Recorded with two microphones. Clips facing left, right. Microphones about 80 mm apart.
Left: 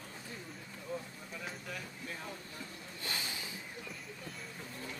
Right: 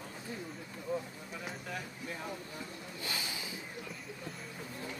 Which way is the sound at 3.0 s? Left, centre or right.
Centre.